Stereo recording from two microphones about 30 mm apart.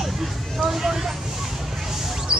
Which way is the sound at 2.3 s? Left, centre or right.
Right.